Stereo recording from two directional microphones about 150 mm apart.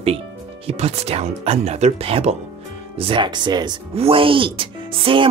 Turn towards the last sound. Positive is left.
turn(degrees=-35)  # may be behind; listen again after turning